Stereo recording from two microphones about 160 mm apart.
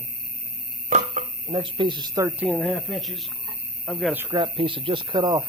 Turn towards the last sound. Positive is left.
turn(degrees=-25)  # may be behind; listen again after turning